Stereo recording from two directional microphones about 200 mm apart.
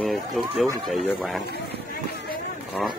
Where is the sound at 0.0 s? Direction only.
Centre (ahead or behind).